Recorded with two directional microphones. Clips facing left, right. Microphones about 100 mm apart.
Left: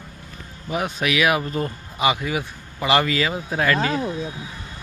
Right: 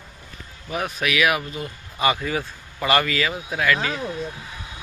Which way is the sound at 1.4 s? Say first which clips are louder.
Left 6 dB; 45° left (ahead or behind).